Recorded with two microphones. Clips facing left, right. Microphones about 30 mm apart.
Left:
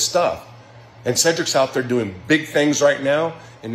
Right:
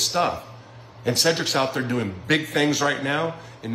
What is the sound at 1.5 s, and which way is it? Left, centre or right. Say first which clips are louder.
Speech: left 5 dB; centre.